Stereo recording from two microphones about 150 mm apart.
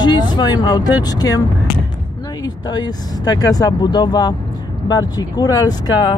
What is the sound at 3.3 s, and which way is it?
Speech, 25° left (ahead or behind).